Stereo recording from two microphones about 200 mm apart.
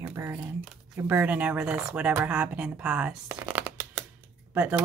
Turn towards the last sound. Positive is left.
turn(degrees=-5)  # may be behind; listen again after turning